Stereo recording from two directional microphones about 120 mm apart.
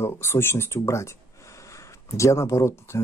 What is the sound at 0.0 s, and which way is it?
Speech, 20° left (ahead or behind).